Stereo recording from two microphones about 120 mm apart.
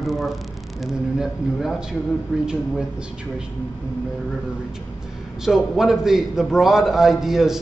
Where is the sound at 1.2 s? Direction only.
Centre (ahead or behind).